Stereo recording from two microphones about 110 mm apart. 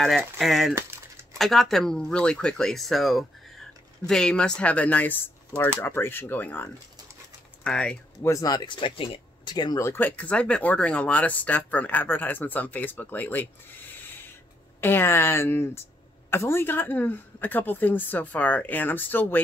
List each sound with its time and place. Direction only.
0.4 s speech: centre (ahead or behind)
8.2 s speech: 30° left (ahead or behind)
9.8 s speech: 20° left (ahead or behind)